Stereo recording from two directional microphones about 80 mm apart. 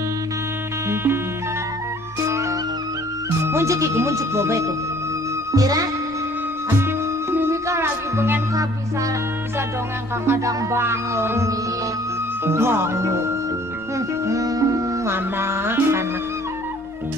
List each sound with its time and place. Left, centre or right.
0.8 s music: right
3.3 s speech: right
5.5 s music: right
6.8 s music: right
10.2 s music: right
15.0 s music: right